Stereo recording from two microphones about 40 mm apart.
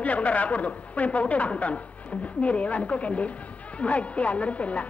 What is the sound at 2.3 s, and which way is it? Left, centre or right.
Speech, left.